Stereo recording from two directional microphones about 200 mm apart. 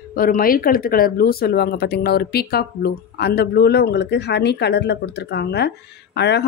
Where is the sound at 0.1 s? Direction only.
45° left (ahead or behind).